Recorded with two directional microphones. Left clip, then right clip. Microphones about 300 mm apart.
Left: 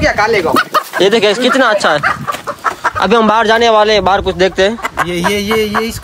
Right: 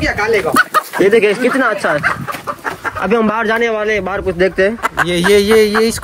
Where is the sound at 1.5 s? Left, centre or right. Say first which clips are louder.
Left 4 dB; centre.